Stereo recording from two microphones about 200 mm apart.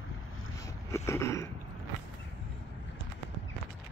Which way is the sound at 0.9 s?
15° left (ahead or behind).